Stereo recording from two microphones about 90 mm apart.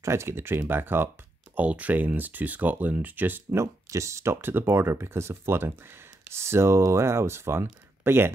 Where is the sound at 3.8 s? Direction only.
35° right (ahead or behind).